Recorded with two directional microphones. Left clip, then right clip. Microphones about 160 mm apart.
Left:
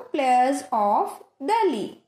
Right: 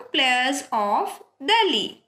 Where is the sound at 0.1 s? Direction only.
50° left (ahead or behind).